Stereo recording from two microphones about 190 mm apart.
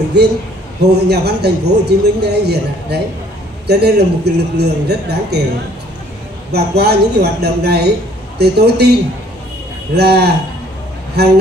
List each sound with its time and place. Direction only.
0.2 s a man's voice: 60° right (ahead or behind)
6.5 s a man's voice: 60° right (ahead or behind)
9.9 s a man's voice: 60° right (ahead or behind)